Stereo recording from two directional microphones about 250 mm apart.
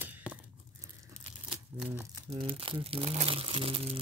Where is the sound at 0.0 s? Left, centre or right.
Centre.